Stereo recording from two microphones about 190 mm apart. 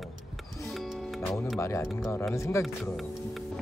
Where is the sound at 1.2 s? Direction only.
Centre (ahead or behind).